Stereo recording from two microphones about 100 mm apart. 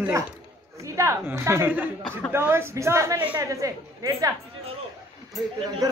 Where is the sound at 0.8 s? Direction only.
30° right (ahead or behind).